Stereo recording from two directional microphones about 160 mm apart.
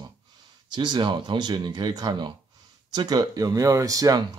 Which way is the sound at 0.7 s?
30° right (ahead or behind).